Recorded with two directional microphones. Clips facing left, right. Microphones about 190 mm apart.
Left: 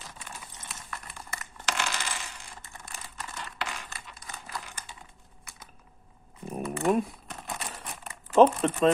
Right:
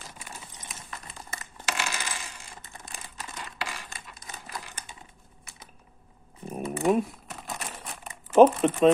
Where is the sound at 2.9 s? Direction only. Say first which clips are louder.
Even; 15° right (ahead or behind).